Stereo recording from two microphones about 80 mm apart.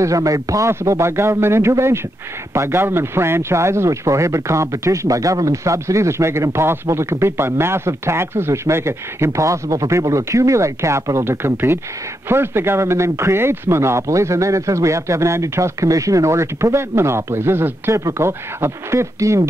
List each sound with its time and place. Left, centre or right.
0.0 s speech: right